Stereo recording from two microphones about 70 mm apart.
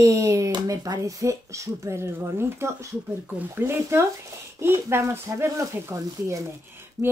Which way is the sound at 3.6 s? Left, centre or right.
Right.